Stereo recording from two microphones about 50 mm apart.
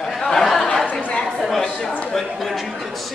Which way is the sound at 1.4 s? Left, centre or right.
Centre.